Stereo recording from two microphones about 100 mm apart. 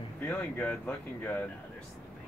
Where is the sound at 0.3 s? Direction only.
15° left (ahead or behind).